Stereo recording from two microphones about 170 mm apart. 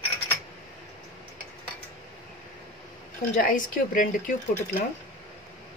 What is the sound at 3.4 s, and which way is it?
Speech, 55° left (ahead or behind).